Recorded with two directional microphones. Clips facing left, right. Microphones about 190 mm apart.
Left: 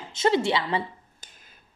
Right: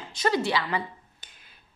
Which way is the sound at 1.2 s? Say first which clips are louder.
Left 2 dB; 40° left (ahead or behind).